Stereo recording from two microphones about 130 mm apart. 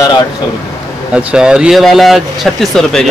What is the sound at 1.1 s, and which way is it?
Speech, 10° right (ahead or behind).